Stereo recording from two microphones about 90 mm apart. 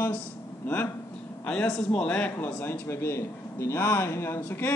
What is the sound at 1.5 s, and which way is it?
A man's voice, 10° left (ahead or behind).